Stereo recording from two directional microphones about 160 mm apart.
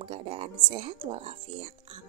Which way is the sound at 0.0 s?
35° right (ahead or behind).